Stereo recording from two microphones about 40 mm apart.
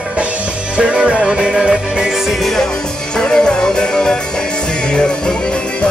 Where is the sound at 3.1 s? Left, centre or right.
Centre.